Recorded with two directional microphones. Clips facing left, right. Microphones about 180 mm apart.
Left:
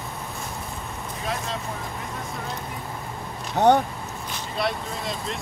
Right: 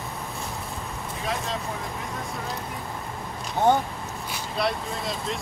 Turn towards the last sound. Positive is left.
turn(degrees=0)  # may be behind; listen again after turning